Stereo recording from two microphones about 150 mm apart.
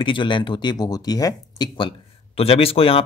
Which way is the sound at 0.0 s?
35° left (ahead or behind).